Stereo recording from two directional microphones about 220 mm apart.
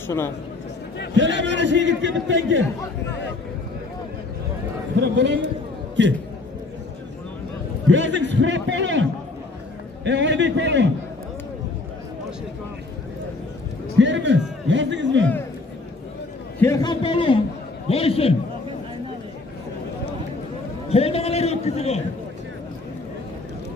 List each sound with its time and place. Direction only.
1.1 s a man's voice: 55° right (ahead or behind)
5.0 s a man's voice: 55° right (ahead or behind)
7.9 s a man's voice: 55° right (ahead or behind)
10.0 s a man's voice: 55° right (ahead or behind)
13.9 s a man's voice: 55° right (ahead or behind)
16.5 s a man's voice: 15° left (ahead or behind)
20.9 s a sound: 30° left (ahead or behind)